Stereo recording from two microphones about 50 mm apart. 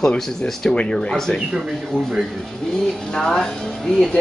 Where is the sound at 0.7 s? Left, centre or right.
Centre.